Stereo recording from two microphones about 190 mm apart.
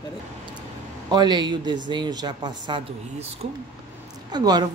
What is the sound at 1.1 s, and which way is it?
A woman's voice, 20° right (ahead or behind).